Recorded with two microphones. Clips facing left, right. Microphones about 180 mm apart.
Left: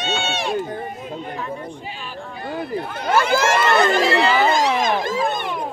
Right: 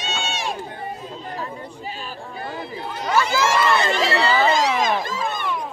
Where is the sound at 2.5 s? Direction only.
55° left (ahead or behind).